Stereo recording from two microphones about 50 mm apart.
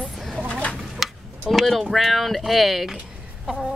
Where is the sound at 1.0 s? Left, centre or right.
Centre.